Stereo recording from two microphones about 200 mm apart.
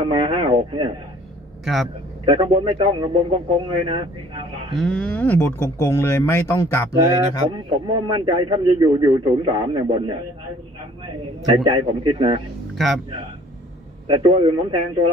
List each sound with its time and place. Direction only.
0.0 s speech: 25° right (ahead or behind)
1.6 s a man's voice: centre (ahead or behind)
2.2 s a man's voice: 25° right (ahead or behind)
4.7 s speech: 5° left (ahead or behind)
7.5 s a man's voice: 25° right (ahead or behind)
11.5 s a man's voice: 25° right (ahead or behind)
12.7 s a man's voice: centre (ahead or behind)
14.0 s a man's voice: 25° right (ahead or behind)